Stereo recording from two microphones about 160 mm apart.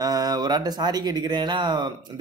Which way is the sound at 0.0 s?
25° right (ahead or behind).